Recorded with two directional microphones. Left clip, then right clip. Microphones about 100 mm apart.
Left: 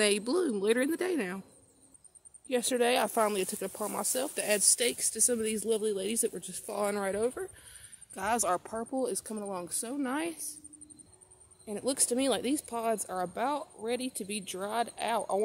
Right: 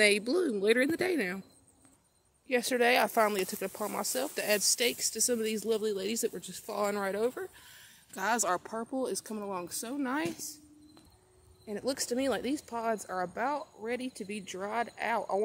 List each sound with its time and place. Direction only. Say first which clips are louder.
0.0 s speech: right 2 dB; 15° left (ahead or behind)
2.4 s speech: right 1 dB; 5° left (ahead or behind)
3.3 s speech: even; 15° left (ahead or behind)
11.6 s speech: left 1 dB; 30° left (ahead or behind)